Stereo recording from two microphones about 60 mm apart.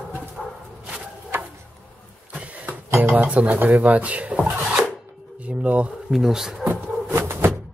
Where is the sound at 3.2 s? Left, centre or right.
Right.